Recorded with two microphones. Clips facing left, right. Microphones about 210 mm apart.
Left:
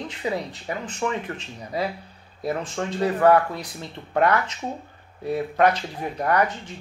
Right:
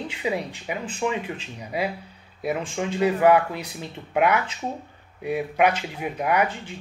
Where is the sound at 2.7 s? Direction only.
10° right (ahead or behind).